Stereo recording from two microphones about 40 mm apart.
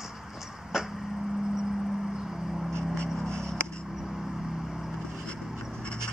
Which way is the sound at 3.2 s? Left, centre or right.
Centre.